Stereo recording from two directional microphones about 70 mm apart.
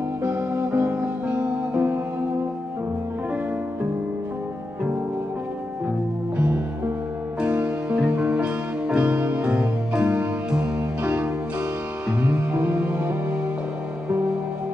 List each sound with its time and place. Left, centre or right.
0.2 s music: right
6.3 s music: right